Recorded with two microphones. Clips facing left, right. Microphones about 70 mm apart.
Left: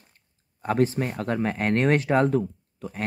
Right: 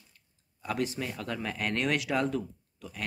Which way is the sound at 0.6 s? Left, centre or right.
Left.